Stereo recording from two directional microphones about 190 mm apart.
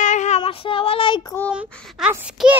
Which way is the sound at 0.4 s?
30° left (ahead or behind).